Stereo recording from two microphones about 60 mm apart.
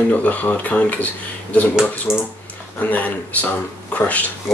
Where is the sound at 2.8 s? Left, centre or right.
Left.